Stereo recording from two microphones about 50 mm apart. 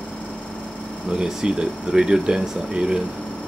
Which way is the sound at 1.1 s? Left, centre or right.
Centre.